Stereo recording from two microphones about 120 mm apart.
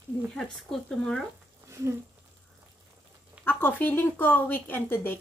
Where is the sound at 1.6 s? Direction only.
25° right (ahead or behind).